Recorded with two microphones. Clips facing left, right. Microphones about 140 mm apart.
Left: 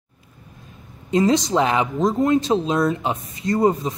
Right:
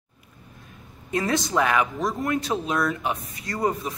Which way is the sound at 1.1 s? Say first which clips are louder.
Left 6 dB; 20° left (ahead or behind).